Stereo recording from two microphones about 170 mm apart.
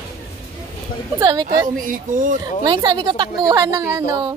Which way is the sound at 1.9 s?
50° right (ahead or behind).